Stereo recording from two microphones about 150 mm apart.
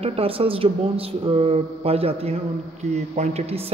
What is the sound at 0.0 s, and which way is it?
A man's voice, 40° right (ahead or behind).